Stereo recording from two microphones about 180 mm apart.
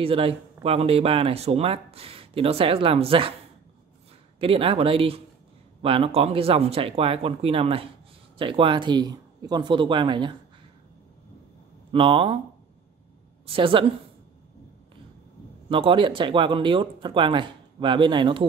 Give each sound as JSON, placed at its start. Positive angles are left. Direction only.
{"t": 0.0, "sound": "speech", "side_deg": -30}
{"t": 4.4, "sound": "speech", "side_deg": -30}
{"t": 11.9, "sound": "speech", "side_deg": -30}
{"t": 13.5, "sound": "speech", "side_deg": -30}
{"t": 15.7, "sound": "speech", "side_deg": -30}